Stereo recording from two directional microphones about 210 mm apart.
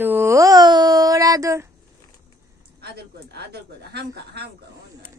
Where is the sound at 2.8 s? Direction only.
50° right (ahead or behind).